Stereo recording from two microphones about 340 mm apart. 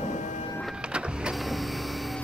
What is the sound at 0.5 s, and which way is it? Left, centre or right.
Power windows, centre.